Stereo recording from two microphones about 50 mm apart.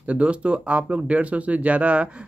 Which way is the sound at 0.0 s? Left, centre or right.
Right.